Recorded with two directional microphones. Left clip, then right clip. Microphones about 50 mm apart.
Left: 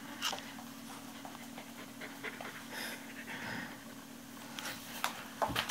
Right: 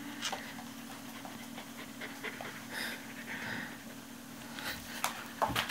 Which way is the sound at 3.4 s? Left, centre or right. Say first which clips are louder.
Right 2 dB; left.